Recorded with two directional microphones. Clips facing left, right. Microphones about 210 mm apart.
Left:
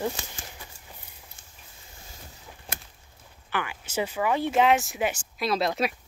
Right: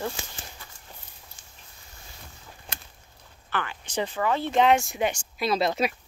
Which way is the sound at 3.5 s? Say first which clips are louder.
Even; 10° left (ahead or behind).